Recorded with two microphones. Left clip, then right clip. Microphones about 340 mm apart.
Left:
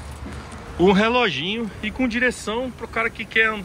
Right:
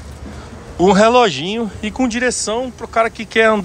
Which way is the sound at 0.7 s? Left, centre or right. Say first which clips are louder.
Right 7 dB; centre.